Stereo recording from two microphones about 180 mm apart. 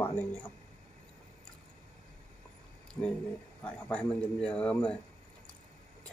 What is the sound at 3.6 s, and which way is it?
A man's voice, 5° left (ahead or behind).